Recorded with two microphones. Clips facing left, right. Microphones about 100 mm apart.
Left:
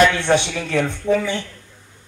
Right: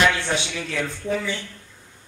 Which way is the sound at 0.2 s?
55° left (ahead or behind).